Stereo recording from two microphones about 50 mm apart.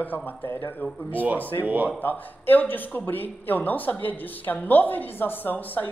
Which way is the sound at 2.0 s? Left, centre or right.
Left.